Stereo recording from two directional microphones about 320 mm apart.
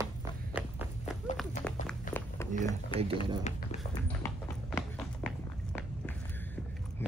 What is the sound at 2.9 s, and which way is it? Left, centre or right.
Speech, centre.